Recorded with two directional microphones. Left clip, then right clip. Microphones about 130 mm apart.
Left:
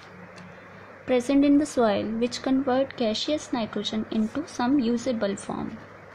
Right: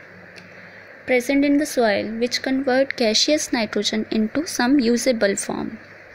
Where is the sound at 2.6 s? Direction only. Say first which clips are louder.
Right 8 dB; 25° right (ahead or behind).